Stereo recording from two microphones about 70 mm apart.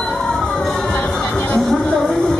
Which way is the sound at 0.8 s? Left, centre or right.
Left.